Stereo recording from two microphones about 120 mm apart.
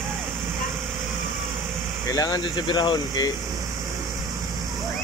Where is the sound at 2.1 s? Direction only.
35° left (ahead or behind).